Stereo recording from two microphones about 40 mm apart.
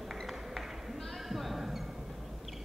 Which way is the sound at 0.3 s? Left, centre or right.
Centre.